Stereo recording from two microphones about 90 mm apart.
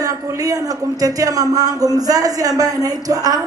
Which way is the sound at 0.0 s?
40° right (ahead or behind).